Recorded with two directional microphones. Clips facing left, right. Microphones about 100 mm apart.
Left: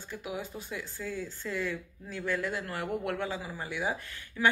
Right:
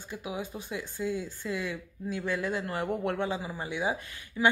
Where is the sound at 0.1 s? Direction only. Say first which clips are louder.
Right 1 dB; 20° right (ahead or behind).